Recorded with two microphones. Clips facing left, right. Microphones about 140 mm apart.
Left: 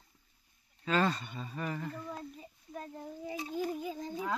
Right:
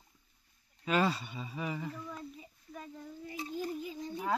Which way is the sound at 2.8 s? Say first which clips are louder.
Left 3 dB; 50° left (ahead or behind).